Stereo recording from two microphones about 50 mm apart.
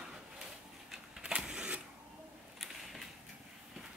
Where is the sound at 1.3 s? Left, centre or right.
Centre.